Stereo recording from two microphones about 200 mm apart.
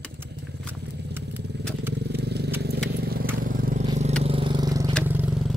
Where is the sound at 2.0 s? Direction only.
55° right (ahead or behind).